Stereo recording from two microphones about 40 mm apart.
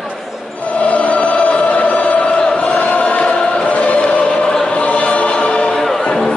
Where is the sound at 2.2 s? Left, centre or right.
Left.